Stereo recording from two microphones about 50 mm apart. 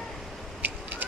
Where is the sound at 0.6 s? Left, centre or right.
Right.